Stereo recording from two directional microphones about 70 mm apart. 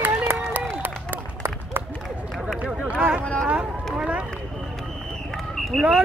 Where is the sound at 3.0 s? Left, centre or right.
Centre.